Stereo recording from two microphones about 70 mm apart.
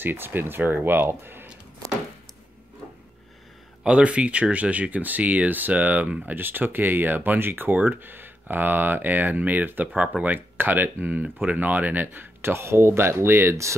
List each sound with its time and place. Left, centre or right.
0.0 s speech: right
3.8 s speech: centre; by 13.7 s right